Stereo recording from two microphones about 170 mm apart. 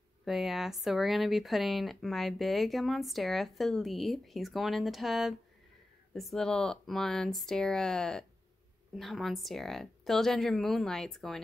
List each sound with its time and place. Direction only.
0.2 s speech: centre (ahead or behind)